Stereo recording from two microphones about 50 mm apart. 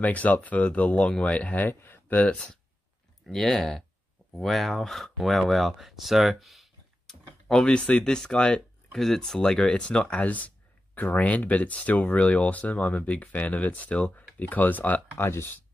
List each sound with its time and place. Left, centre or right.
0.0 s speech: left
1.8 s a sound: left
2.1 s speech: left
3.3 s speech: centre
7.6 s speech: left
8.9 s speech: centre; by 15.0 s left
15.1 s speech: left